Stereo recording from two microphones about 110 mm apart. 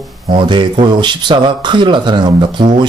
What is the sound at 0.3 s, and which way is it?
A man's voice, 45° right (ahead or behind).